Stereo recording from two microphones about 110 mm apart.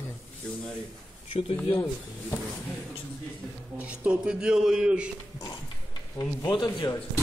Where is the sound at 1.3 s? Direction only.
60° left (ahead or behind).